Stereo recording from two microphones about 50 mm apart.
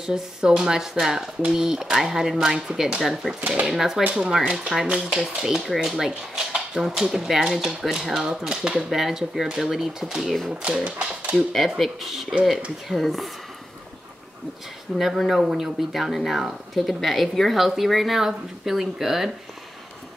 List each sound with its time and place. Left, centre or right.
0.0 s speech: centre
3.3 s speech: right
3.6 s speech: centre; by 11.3 s right
11.3 s speech: centre
15.1 s speech: centre